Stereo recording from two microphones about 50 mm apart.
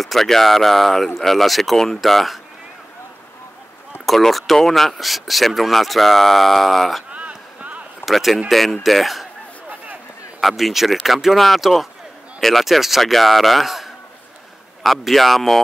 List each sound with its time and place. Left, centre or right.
0.0 s speech: centre
4.0 s speech: centre
7.1 s a sound: right
8.0 s speech: centre
10.4 s speech: centre